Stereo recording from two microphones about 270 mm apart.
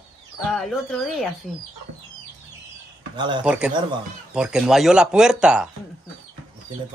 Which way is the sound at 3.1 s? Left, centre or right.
Centre.